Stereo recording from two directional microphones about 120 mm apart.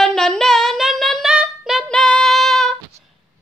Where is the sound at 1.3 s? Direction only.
10° right (ahead or behind).